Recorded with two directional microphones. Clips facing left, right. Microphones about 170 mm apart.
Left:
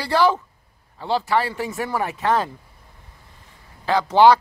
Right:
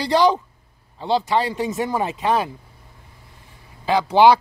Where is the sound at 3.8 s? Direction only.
15° right (ahead or behind).